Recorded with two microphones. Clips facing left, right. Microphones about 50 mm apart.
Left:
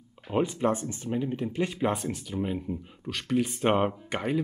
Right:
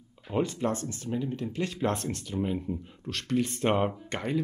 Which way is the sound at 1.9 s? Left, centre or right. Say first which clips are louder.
Left 1 dB; centre.